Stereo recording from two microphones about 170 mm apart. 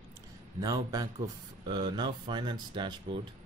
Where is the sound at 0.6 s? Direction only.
20° right (ahead or behind).